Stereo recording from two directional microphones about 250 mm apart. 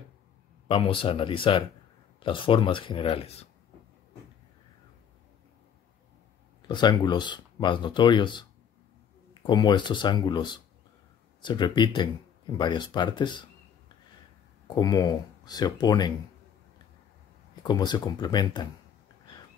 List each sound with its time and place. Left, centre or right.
0.7 s speech: left
6.7 s speech: centre
14.8 s speech: centre
17.6 s speech: centre